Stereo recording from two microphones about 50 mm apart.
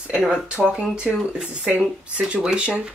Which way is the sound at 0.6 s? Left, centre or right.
Right.